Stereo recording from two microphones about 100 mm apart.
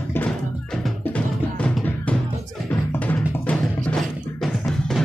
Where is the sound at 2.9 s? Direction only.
15° left (ahead or behind).